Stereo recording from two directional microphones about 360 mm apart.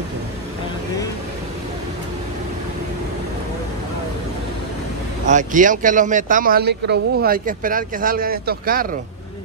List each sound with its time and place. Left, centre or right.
5.3 s speech: right